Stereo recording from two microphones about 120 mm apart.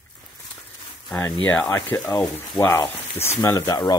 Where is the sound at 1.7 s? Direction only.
15° left (ahead or behind).